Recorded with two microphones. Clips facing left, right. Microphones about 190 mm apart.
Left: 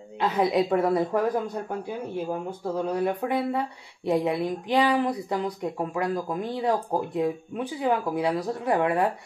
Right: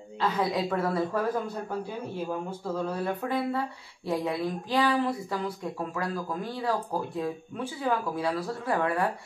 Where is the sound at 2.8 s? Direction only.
15° left (ahead or behind).